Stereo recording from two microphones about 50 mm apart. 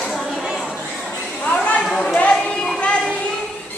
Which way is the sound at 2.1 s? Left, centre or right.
Left.